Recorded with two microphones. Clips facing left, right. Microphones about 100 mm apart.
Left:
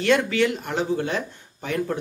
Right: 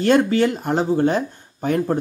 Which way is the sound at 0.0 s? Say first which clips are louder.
Right 4 dB; 40° right (ahead or behind).